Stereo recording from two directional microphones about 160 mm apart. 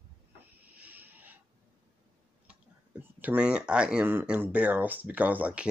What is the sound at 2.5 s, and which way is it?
Speech, 10° right (ahead or behind).